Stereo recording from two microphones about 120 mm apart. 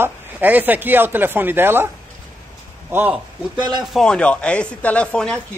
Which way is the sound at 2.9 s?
15° right (ahead or behind).